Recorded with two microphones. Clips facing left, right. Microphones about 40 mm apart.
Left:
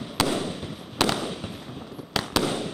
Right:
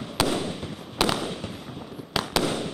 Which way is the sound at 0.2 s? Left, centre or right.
Centre.